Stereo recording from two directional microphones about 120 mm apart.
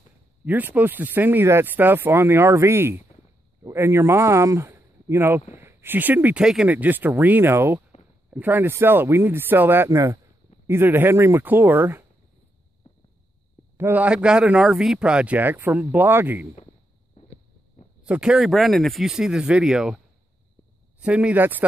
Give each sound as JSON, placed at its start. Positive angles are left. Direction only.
{"t": 0.5, "sound": "speech", "side_deg": -15}
{"t": 13.7, "sound": "speech", "side_deg": -15}
{"t": 18.0, "sound": "speech", "side_deg": -10}
{"t": 21.0, "sound": "speech", "side_deg": -10}